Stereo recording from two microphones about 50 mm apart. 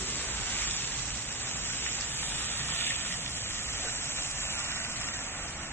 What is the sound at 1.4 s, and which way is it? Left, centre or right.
Rain, left.